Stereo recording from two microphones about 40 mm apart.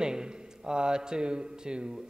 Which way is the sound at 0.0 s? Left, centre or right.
Centre.